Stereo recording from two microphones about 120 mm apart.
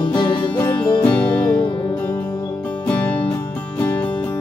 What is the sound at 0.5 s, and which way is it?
Music, 20° left (ahead or behind).